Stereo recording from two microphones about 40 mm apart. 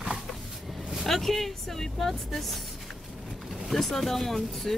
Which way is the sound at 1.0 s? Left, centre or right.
Centre.